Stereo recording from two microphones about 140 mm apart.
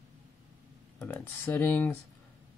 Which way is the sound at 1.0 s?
10° left (ahead or behind).